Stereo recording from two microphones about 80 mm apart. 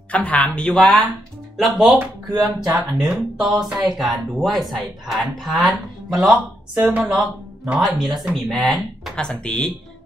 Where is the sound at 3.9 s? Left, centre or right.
Centre.